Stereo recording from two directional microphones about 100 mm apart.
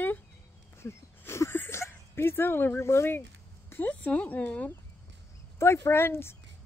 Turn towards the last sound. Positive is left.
turn(degrees=25)  # may be behind; listen again after turning